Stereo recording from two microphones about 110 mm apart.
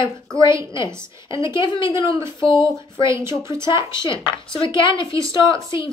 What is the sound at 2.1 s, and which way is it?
A woman's voice, 25° right (ahead or behind).